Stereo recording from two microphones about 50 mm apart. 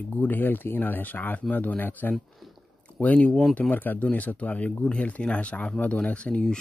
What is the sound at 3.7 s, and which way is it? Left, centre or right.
Speech, left.